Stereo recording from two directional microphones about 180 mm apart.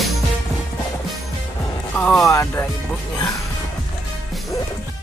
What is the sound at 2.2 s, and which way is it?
Music, 15° left (ahead or behind).